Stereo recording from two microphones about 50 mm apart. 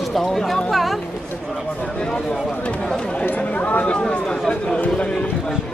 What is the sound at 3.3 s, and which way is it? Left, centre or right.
Speech, left.